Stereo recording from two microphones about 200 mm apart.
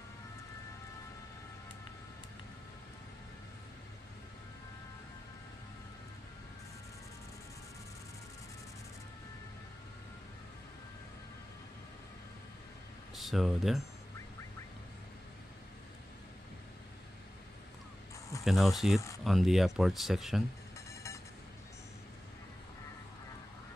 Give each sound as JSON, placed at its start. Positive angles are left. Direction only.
{"t": 13.1, "sound": "speech", "side_deg": 0}
{"t": 18.4, "sound": "speech", "side_deg": 0}
{"t": 20.9, "sound": "music", "side_deg": 15}